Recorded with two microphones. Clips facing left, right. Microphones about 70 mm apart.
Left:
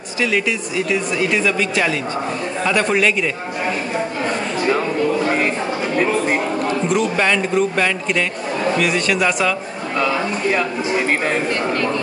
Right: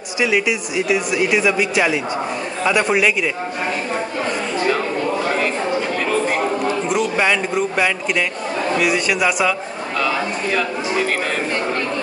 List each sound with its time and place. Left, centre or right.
0.2 s speech: centre
6.9 s speech: centre